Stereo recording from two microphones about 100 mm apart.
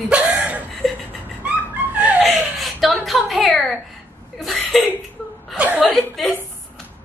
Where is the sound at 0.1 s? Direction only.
15° right (ahead or behind).